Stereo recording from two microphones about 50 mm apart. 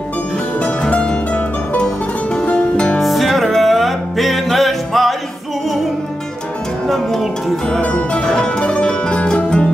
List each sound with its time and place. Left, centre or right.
0.6 s music: left
3.0 s music: centre
6.9 s speech: centre
7.8 s music: left